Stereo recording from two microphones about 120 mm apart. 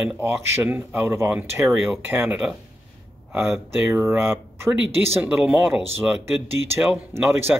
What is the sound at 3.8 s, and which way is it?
Speech, 20° right (ahead or behind).